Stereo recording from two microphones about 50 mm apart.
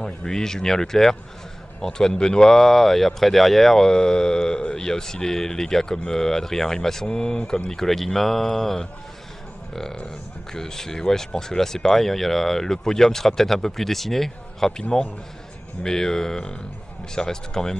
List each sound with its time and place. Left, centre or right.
0.0 s speech: centre
7.1 s speech: centre
14.8 s a man's voice: centre